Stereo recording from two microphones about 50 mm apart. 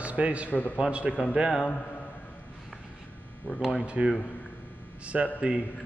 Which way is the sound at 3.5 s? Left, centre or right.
Centre.